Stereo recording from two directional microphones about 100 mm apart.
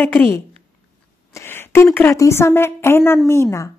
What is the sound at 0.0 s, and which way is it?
Speech, 20° left (ahead or behind).